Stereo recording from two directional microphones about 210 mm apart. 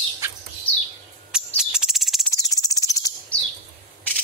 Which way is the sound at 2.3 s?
15° left (ahead or behind).